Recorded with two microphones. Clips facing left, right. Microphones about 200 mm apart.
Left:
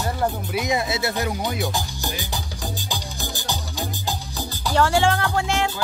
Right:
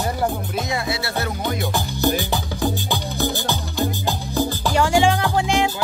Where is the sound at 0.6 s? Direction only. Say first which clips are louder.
Left 2 dB; 20° left (ahead or behind).